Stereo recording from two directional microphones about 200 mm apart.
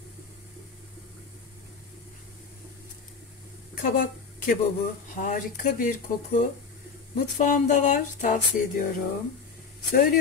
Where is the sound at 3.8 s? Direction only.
45° left (ahead or behind).